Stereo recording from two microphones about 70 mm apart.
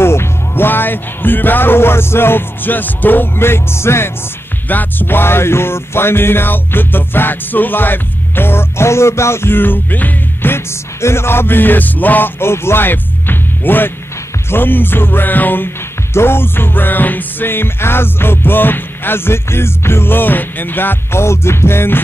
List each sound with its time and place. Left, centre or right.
0.0 s speech: left
4.6 s music: left